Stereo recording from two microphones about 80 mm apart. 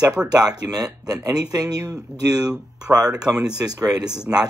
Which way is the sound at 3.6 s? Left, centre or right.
Right.